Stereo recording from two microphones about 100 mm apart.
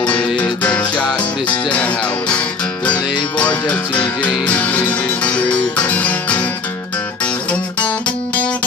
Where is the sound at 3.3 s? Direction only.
15° left (ahead or behind).